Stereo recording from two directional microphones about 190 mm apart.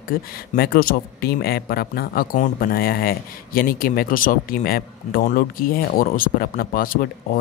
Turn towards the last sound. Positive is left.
turn(degrees=45)  # may be behind; listen again after turning